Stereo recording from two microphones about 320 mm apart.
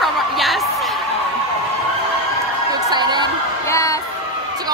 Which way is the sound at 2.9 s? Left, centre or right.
Centre.